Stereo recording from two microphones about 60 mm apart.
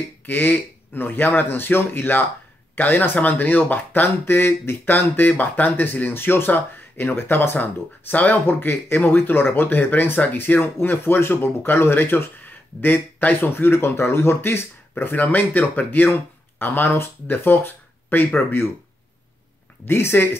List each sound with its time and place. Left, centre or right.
0.3 s speech: left
19.8 s speech: left